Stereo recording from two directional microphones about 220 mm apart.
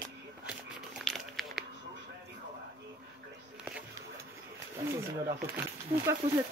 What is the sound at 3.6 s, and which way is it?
Music, 5° right (ahead or behind).